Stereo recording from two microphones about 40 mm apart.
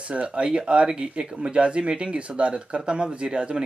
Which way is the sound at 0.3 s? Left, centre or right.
Centre.